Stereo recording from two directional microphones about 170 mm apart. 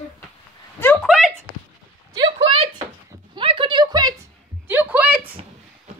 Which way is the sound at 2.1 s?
30° right (ahead or behind).